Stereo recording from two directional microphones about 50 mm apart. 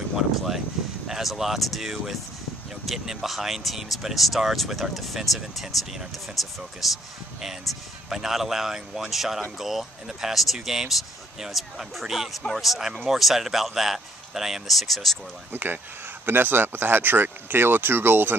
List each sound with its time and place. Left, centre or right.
1.0 s a man's voice: centre
15.5 s speech: right